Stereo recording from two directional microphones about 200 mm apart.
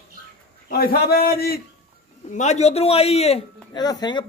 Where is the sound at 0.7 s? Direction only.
50° left (ahead or behind).